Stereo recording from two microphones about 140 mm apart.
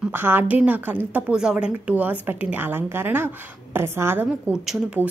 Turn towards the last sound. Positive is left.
turn(degrees=-5)  # may be behind; listen again after turning